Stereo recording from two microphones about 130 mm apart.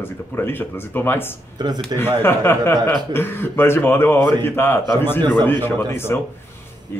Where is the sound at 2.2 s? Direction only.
15° left (ahead or behind).